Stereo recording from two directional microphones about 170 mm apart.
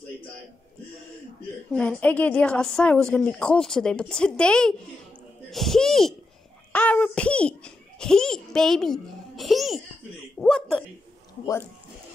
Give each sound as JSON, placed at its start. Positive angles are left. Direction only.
{"t": 1.7, "sound": "a woman's voice", "side_deg": 5}
{"t": 11.4, "sound": "speech", "side_deg": 15}